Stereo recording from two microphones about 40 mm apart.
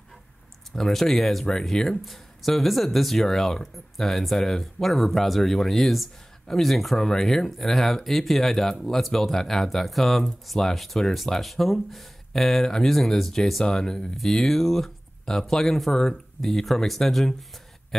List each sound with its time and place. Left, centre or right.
0.7 s speech: centre
14.1 s speech: centre